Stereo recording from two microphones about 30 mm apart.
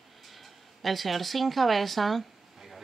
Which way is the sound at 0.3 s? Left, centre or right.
Centre.